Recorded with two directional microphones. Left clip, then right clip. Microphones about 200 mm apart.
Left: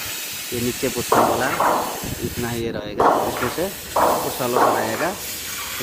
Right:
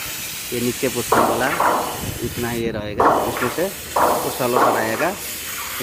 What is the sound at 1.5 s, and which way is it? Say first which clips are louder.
Speech: right 1 dB; 10° left (ahead or behind).